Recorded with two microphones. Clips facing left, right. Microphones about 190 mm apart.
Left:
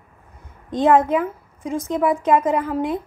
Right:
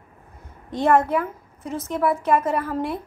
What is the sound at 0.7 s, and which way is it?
A woman's voice, 20° left (ahead or behind).